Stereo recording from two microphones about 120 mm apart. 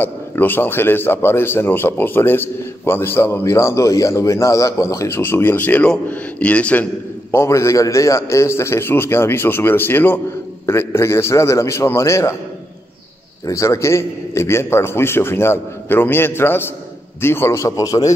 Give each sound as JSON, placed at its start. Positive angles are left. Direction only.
{"t": 0.0, "sound": "a man's voice", "side_deg": 15}
{"t": 13.5, "sound": "a man's voice", "side_deg": 25}